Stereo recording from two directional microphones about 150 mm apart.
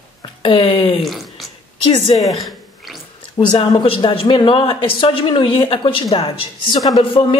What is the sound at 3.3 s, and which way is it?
Speech, 35° left (ahead or behind).